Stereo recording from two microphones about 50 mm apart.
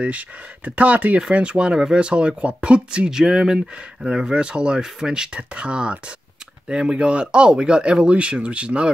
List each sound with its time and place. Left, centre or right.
0.0 s speech: right